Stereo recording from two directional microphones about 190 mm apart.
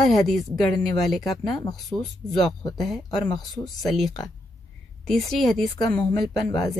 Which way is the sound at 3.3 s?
20° left (ahead or behind).